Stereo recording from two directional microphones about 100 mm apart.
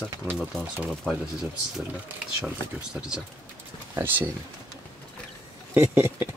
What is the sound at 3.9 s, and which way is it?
Speech, 20° right (ahead or behind).